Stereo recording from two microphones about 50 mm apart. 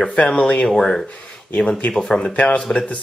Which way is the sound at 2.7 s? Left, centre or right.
Left.